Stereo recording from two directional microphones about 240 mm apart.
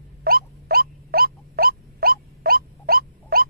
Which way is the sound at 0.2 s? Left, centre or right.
Right.